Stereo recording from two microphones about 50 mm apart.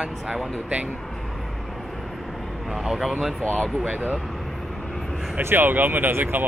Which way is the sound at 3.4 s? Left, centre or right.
Left.